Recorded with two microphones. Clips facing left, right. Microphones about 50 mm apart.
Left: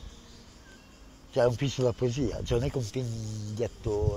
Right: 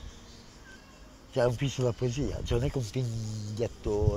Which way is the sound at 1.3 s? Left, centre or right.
Left.